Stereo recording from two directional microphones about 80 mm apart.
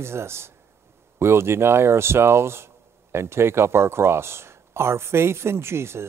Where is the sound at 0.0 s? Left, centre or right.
Right.